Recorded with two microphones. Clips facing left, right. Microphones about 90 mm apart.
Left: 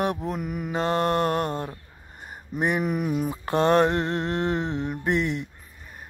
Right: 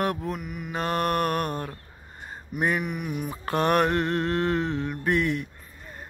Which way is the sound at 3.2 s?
20° left (ahead or behind).